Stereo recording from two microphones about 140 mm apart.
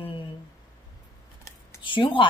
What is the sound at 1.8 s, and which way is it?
Speech, 35° left (ahead or behind).